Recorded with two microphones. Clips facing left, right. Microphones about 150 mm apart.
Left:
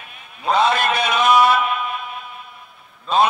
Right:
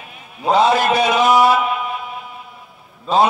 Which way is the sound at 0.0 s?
15° right (ahead or behind).